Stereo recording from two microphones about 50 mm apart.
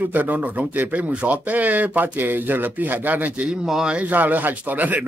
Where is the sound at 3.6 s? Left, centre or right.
Centre.